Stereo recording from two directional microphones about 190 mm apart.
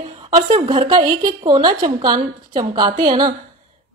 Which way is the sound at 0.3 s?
40° right (ahead or behind).